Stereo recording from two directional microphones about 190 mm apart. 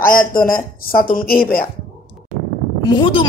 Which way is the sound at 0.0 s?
45° left (ahead or behind).